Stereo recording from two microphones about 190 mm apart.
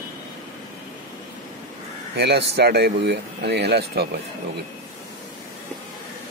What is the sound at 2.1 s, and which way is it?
Speech, 60° right (ahead or behind).